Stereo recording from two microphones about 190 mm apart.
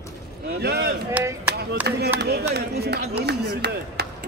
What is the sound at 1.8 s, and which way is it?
Speech, 60° right (ahead or behind).